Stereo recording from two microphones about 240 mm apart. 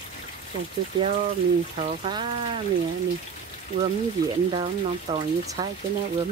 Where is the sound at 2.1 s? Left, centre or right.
Centre.